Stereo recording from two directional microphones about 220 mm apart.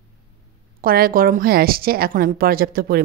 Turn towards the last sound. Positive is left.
turn(degrees=-45)  # may be behind; listen again after turning